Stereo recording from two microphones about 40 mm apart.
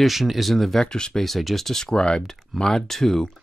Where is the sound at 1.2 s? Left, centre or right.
Centre.